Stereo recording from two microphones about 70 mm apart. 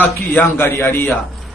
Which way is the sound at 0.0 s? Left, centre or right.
Left.